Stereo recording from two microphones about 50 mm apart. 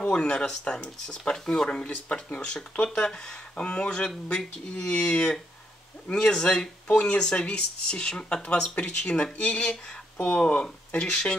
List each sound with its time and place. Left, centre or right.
0.0 s speech: left